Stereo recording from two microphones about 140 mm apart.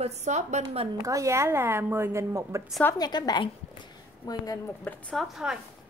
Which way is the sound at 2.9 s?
30° left (ahead or behind).